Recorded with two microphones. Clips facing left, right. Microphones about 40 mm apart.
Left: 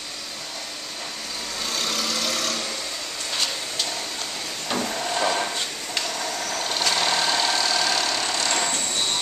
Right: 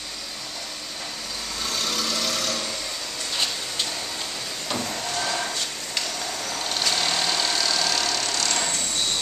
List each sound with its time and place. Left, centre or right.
1.8 s vehicle: centre
4.6 s vehicle: centre
5.2 s a sound: centre
6.6 s vehicle: centre